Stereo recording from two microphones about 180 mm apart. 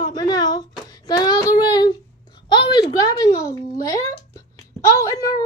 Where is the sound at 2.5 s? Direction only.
25° left (ahead or behind).